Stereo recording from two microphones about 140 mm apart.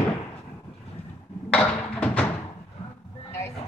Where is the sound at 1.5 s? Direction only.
10° left (ahead or behind).